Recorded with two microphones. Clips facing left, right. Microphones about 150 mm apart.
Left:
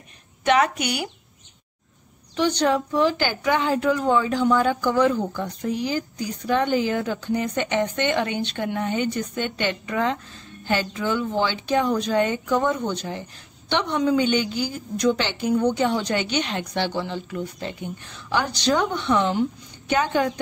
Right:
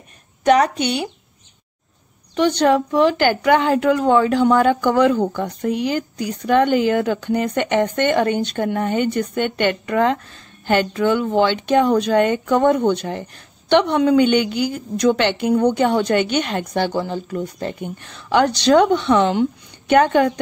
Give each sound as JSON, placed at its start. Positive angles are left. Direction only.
{"t": 0.4, "sound": "a sound", "side_deg": -40}
{"t": 0.7, "sound": "speech", "side_deg": -25}
{"t": 2.3, "sound": "a woman's voice", "side_deg": -60}
{"t": 19.9, "sound": "a woman's voice", "side_deg": -60}